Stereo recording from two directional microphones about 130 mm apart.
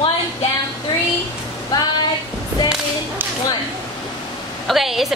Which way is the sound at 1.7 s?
30° left (ahead or behind).